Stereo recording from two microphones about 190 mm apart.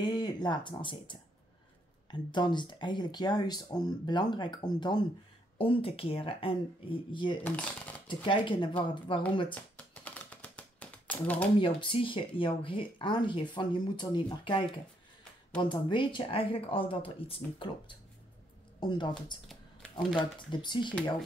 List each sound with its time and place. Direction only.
0.0 s speech: 25° left (ahead or behind)
7.4 s coin: 5° left (ahead or behind)
8.1 s speech: 25° left (ahead or behind)
9.5 s typing: 5° left (ahead or behind)
11.6 s speech: 25° left (ahead or behind)
15.7 s speech: 25° left (ahead or behind)
19.4 s a sound: centre (ahead or behind)
20.2 s speech: 25° left (ahead or behind)